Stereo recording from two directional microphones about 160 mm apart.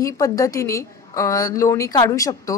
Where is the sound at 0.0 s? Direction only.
20° left (ahead or behind).